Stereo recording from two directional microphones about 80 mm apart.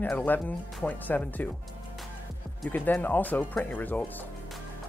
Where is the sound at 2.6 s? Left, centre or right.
Left.